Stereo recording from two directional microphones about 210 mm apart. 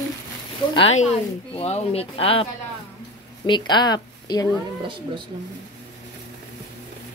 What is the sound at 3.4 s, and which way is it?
Speech, 20° left (ahead or behind).